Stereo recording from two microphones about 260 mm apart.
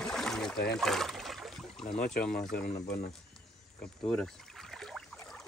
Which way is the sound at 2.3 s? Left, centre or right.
Left.